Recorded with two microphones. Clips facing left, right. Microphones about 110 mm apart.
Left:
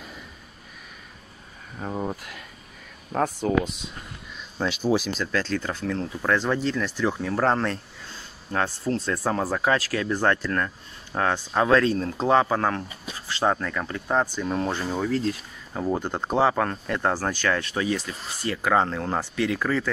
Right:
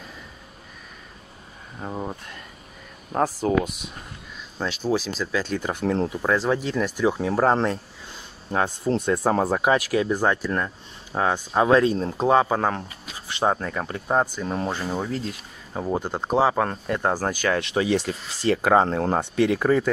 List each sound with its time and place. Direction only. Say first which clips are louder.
1.8 s a sound: left 1 dB; centre (ahead or behind)
3.3 s speech: right 2 dB; 35° right (ahead or behind)
4.6 s speech: left 1 dB; centre (ahead or behind)
16.5 s speech: right 2 dB; 20° right (ahead or behind)
17.9 s speech: right 6 dB; 30° right (ahead or behind)